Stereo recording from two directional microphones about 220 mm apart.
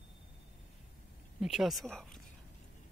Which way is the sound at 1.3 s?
Centre (ahead or behind).